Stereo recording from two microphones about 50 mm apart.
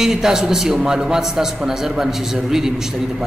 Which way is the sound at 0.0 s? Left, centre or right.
Centre.